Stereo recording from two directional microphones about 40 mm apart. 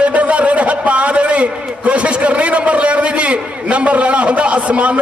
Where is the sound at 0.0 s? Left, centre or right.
Right.